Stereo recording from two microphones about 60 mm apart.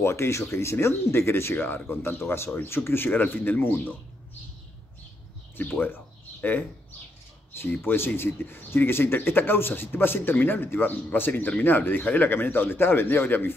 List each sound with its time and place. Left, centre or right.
0.0 s speech: left
5.6 s speech: left
7.8 s speech: left